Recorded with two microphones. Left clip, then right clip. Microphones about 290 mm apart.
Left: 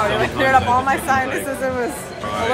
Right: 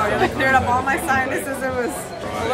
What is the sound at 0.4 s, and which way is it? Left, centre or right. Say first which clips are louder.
Speech: left 4 dB; centre.